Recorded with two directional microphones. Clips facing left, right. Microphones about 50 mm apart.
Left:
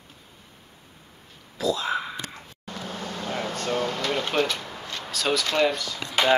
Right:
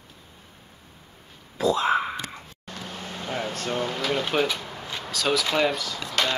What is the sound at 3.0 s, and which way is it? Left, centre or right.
Air conditioning, centre.